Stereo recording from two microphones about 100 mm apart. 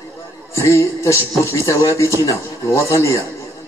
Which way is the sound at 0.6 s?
30° left (ahead or behind).